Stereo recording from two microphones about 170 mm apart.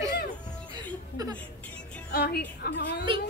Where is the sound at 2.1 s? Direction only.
65° left (ahead or behind).